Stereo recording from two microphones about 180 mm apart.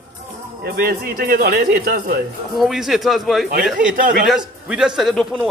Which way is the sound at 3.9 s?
50° right (ahead or behind).